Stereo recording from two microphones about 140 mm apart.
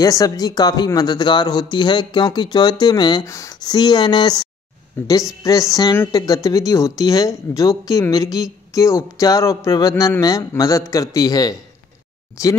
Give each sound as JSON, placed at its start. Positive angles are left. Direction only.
{"t": 0.0, "sound": "speech", "side_deg": 25}
{"t": 5.0, "sound": "a woman's voice", "side_deg": 15}